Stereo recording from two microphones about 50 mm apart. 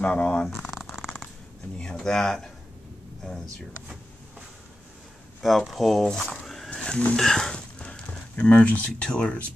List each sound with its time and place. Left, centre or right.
0.0 s speech: left
0.6 s shuffling cards: centre
0.9 s purr: centre
2.0 s speech: centre
5.4 s speech: centre
6.0 s speech: centre
6.4 s horse: centre
6.7 s a sound: centre
7.2 s speech: centre
7.5 s a sound: centre